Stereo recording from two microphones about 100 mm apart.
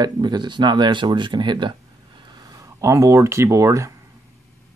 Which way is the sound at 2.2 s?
45° right (ahead or behind).